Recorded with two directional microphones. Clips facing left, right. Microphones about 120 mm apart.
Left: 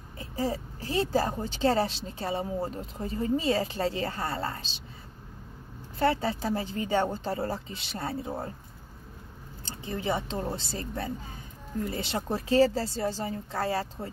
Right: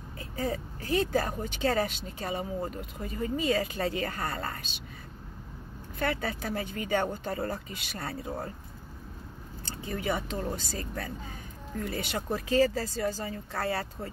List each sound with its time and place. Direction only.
0.2 s speech: 30° left (ahead or behind)
5.9 s speech: 30° left (ahead or behind)
9.7 s speech: 25° left (ahead or behind)